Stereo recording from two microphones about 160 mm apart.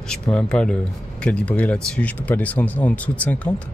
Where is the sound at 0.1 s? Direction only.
5° left (ahead or behind).